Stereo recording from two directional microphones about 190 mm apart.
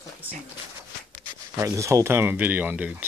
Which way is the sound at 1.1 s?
15° right (ahead or behind).